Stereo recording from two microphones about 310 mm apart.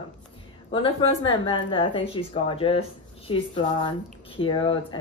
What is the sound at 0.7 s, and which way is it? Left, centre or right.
Speech, centre.